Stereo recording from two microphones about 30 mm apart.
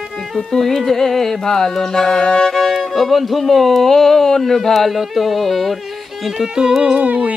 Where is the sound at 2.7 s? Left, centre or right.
Centre.